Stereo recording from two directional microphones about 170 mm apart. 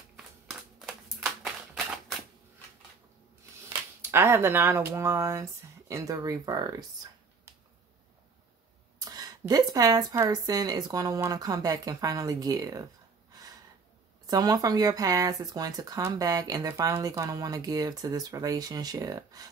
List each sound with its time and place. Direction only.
0.5 s a sound: centre (ahead or behind)
4.0 s speech: 15° right (ahead or behind)
9.0 s speech: 20° right (ahead or behind)
13.3 s gasp: 20° right (ahead or behind)
14.2 s speech: 20° right (ahead or behind)